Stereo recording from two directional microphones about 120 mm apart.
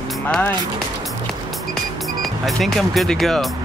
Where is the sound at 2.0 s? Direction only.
Centre (ahead or behind).